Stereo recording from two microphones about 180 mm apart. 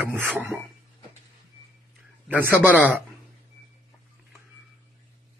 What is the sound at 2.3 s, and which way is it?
Speech, 10° right (ahead or behind).